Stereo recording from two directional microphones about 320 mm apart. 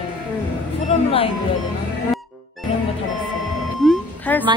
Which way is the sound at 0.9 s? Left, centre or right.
Centre.